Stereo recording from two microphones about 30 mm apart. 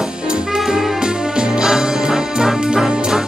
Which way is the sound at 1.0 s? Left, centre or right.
Right.